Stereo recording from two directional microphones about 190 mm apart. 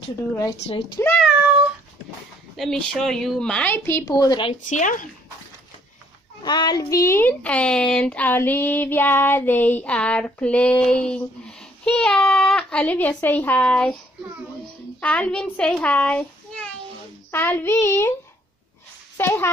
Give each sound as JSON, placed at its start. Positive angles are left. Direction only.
{"t": 0.9, "sound": "speech", "side_deg": 10}
{"t": 2.5, "sound": "speech", "side_deg": 0}
{"t": 4.6, "sound": "speech", "side_deg": 40}
{"t": 6.4, "sound": "a woman's voice", "side_deg": 20}
{"t": 15.0, "sound": "a woman's voice", "side_deg": 5}
{"t": 17.3, "sound": "a woman's voice", "side_deg": 10}
{"t": 19.1, "sound": "speech", "side_deg": 10}